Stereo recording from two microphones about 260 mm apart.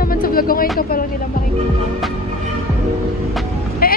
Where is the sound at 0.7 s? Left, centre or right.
Left.